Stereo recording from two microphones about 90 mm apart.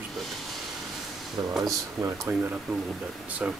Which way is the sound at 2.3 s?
25° right (ahead or behind).